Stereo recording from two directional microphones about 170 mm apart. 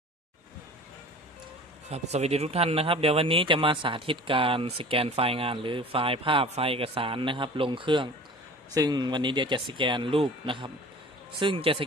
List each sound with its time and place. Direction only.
1.9 s speech: 40° right (ahead or behind)